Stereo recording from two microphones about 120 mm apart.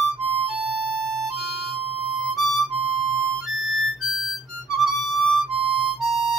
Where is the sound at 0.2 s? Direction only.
50° right (ahead or behind).